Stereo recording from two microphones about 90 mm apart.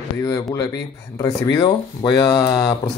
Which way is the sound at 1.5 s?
55° left (ahead or behind).